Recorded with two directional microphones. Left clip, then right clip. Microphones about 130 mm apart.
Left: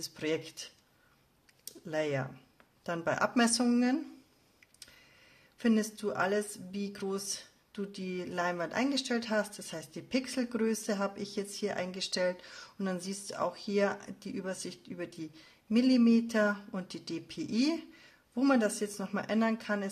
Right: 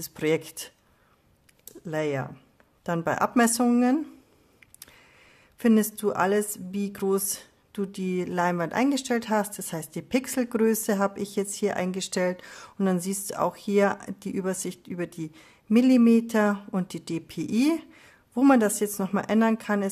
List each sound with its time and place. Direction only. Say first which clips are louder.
0.0 s a woman's voice: right 8 dB; 45° right (ahead or behind)
1.9 s speech: right 5 dB; 35° right (ahead or behind)
5.6 s a woman's voice: right 8 dB; 50° right (ahead or behind)